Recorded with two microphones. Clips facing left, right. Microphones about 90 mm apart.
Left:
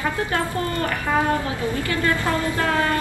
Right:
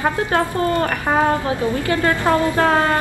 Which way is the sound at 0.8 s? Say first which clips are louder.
Right 4 dB; 50° right (ahead or behind).